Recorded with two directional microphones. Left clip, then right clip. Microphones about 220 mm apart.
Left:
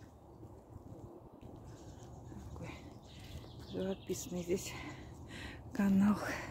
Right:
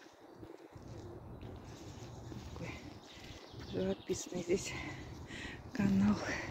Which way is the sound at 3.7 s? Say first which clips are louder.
Right 2 dB; 15° left (ahead or behind).